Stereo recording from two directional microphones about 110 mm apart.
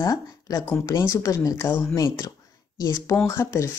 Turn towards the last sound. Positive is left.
turn(degrees=25)  # may be behind; listen again after turning